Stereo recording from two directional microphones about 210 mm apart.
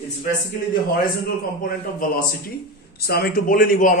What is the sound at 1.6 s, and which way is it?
A man's voice, 40° left (ahead or behind).